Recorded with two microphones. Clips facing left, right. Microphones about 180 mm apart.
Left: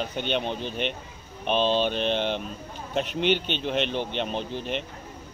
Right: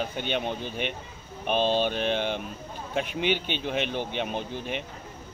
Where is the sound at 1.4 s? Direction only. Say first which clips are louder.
Left 1 dB; 50° right (ahead or behind).